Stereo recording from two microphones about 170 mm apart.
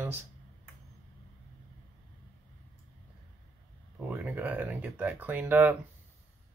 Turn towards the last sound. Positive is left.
turn(degrees=-10)  # may be behind; listen again after turning